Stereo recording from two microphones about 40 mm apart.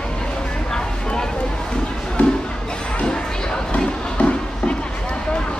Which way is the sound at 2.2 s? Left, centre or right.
Left.